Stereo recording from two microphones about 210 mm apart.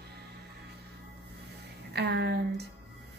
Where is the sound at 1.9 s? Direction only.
55° right (ahead or behind).